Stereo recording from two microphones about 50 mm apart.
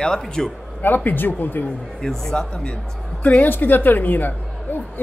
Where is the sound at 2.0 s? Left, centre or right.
Centre.